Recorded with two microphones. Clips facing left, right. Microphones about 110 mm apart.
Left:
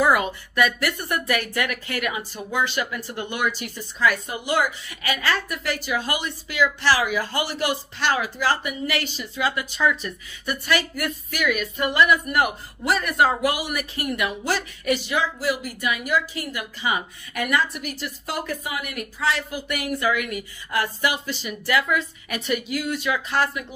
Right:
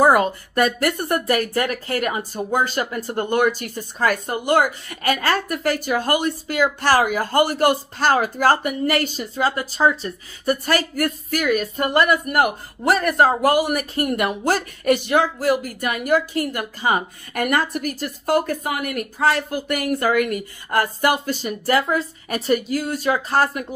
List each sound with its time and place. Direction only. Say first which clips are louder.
0.0 s a woman's voice: right 5 dB; 40° right (ahead or behind)